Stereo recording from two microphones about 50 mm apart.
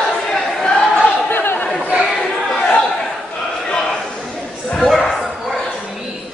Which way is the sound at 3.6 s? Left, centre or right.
Centre.